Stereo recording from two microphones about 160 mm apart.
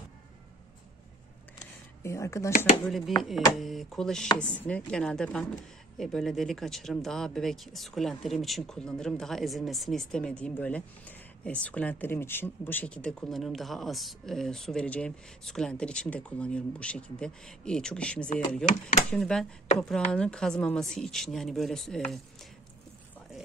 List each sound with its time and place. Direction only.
2.0 s speech: 20° left (ahead or behind)
3.2 s speech: centre (ahead or behind)